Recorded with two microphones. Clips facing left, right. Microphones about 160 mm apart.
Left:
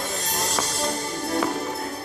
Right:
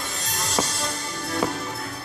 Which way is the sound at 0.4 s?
45° left (ahead or behind).